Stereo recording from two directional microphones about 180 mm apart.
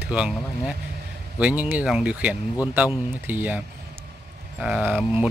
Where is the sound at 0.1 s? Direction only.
5° right (ahead or behind).